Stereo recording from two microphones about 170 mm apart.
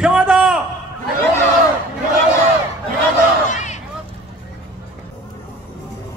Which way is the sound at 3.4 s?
45° left (ahead or behind).